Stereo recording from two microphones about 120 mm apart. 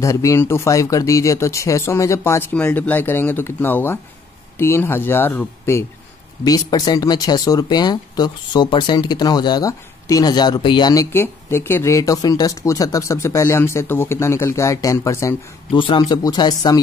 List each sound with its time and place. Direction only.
0.0 s speech: 25° left (ahead or behind)
6.4 s speech: 30° left (ahead or behind)
11.1 s speech: 20° left (ahead or behind)
15.7 s speech: 45° left (ahead or behind)